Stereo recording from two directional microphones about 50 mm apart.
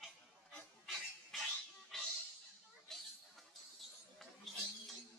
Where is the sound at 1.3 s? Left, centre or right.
Centre.